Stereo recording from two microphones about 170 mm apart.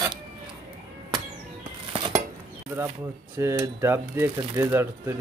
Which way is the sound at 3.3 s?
15° right (ahead or behind).